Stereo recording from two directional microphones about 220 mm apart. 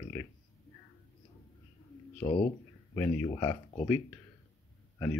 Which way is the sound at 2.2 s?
25° left (ahead or behind).